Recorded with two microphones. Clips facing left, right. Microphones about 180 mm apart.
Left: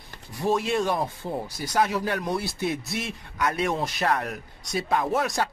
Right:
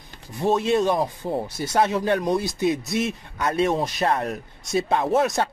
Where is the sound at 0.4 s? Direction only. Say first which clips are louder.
Right 4 dB; 20° right (ahead or behind).